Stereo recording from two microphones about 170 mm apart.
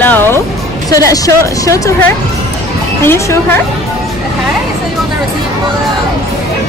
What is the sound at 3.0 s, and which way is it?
Speech, 15° left (ahead or behind).